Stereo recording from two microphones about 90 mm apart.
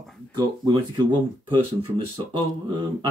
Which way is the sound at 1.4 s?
60° right (ahead or behind).